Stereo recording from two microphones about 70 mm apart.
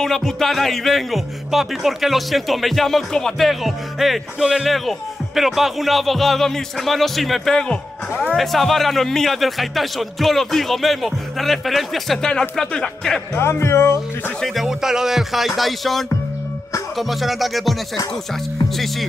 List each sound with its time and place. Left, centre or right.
0.0 s speech: centre
13.3 s speech: left
14.4 s speech: centre